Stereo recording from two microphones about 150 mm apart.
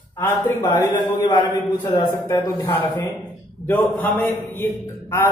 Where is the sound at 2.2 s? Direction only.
15° left (ahead or behind).